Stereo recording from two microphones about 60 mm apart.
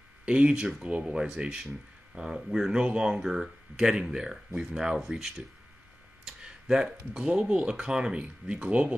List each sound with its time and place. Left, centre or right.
0.2 s speech: right